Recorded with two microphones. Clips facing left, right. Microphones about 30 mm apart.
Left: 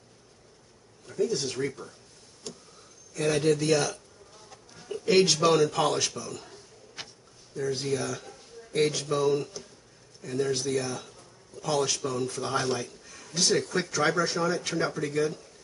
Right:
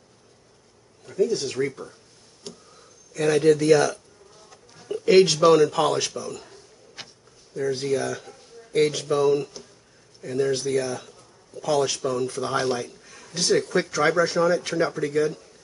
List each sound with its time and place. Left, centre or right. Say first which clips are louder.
1.0 s speech: right 5 dB; centre
2.4 s a sound: right 1 dB; centre
3.4 s speech: right 8 dB; centre
4.5 s insect: right 6 dB; centre
5.5 s a man's voice: right 5 dB; centre